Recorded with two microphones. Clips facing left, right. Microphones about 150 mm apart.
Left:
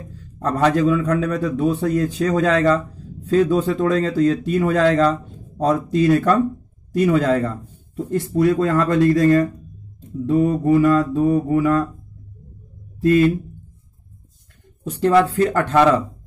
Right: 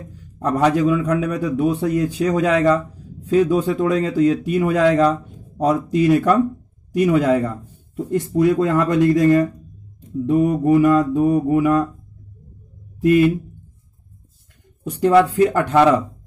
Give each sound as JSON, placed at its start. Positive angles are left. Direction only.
{"t": 0.1, "sound": "a man's voice", "side_deg": -15}
{"t": 13.0, "sound": "a man's voice", "side_deg": -15}
{"t": 14.9, "sound": "a man's voice", "side_deg": -15}